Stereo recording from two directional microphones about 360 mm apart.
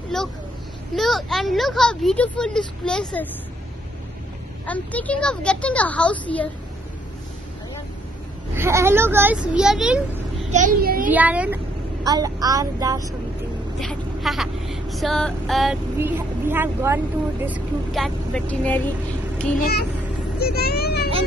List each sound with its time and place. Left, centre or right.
0.1 s speech: centre
4.6 s speech: centre
8.5 s speech: centre
10.5 s a child's voice: right
11.1 s a woman's voice: centre
20.3 s speech: left